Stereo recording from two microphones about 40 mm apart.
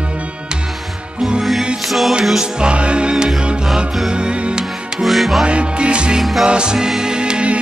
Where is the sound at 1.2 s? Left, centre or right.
Centre.